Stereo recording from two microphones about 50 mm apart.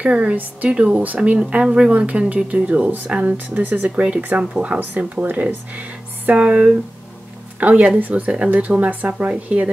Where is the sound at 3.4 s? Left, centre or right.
Right.